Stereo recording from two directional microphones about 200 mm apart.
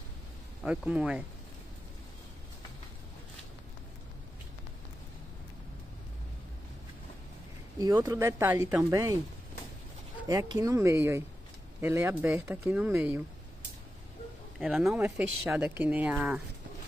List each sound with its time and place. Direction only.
0.6 s speech: 5° right (ahead or behind)
7.8 s speech: 20° right (ahead or behind)
10.2 s speech: 20° right (ahead or behind)
14.6 s speech: centre (ahead or behind)